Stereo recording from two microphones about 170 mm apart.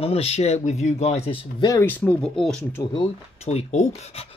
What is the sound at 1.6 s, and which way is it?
Speech, 20° left (ahead or behind).